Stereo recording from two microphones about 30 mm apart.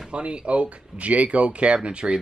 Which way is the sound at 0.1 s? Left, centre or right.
Right.